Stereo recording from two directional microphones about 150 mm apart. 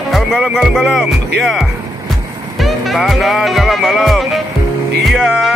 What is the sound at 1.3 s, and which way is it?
Speech, centre (ahead or behind).